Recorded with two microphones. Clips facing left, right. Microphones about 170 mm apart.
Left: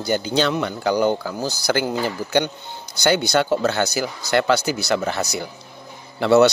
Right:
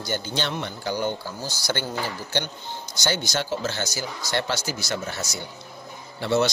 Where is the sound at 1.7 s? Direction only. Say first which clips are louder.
Left 7 dB; 90° left.